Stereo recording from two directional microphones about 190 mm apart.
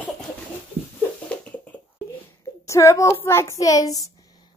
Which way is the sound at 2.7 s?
15° left (ahead or behind).